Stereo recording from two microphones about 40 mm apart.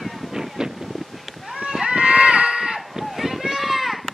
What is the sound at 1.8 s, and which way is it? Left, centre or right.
Run, right.